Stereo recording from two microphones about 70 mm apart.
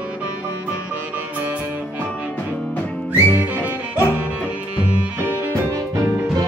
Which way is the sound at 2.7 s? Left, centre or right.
Centre.